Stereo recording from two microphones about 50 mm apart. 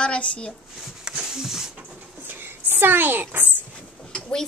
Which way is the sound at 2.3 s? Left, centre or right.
Right.